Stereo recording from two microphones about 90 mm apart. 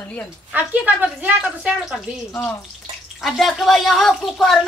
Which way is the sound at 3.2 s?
Centre (ahead or behind).